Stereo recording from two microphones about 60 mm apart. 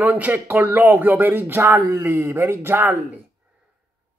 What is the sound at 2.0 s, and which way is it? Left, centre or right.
Speech, right.